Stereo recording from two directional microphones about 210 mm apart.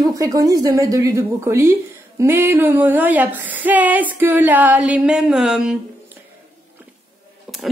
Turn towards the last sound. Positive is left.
turn(degrees=0)  # may be behind; listen again after turning